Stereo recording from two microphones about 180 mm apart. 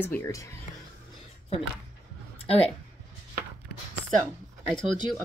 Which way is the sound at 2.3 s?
35° left (ahead or behind).